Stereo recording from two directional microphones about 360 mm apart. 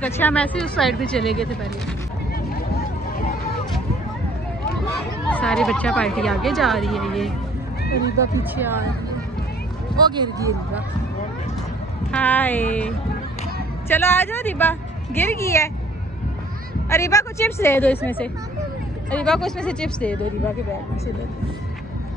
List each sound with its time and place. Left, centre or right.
0.0 s speech: centre
3.3 s a sound: left
5.3 s speech: centre
7.8 s speech: left
9.9 s speech: centre
12.1 s speech: centre
16.9 s a woman's voice: centre